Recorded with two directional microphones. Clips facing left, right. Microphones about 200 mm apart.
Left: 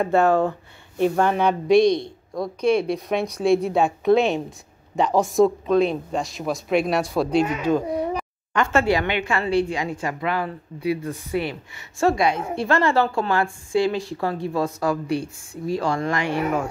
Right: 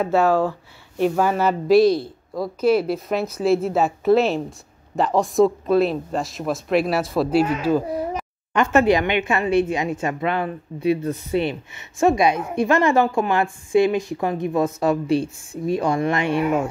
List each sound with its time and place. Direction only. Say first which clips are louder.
0.0 s speech: even; centre (ahead or behind)
8.5 s a woman's voice: right 3 dB; 20° right (ahead or behind)